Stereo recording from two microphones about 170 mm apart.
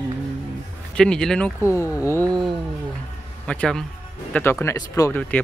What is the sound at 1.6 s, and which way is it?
Speech, 15° left (ahead or behind).